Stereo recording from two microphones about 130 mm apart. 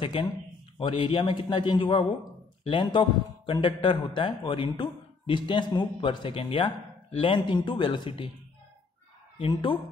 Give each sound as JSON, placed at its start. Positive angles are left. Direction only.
{"t": 0.0, "sound": "a man's voice", "side_deg": 40}
{"t": 9.4, "sound": "a man's voice", "side_deg": 40}